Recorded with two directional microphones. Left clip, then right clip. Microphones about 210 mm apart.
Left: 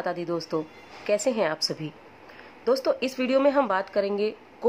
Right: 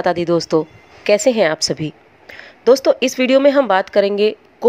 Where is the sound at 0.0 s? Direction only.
30° right (ahead or behind).